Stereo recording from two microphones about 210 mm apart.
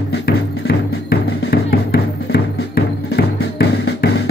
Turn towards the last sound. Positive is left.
turn(degrees=50)  # may be behind; listen again after turning